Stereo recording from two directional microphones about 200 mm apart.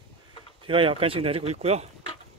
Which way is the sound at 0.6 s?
25° right (ahead or behind).